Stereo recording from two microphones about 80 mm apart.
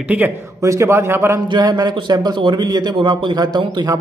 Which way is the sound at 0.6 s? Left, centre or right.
Right.